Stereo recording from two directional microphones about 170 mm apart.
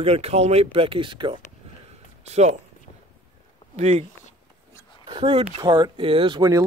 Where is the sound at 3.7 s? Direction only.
40° right (ahead or behind).